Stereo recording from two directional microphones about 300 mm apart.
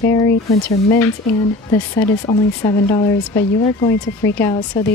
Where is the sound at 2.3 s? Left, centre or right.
Centre.